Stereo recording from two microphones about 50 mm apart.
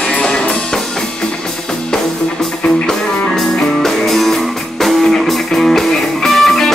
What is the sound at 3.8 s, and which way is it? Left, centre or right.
Music, centre.